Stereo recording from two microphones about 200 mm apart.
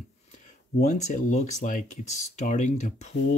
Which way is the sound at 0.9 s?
35° left (ahead or behind).